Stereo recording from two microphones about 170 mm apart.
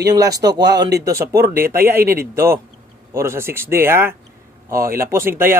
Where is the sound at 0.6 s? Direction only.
85° right.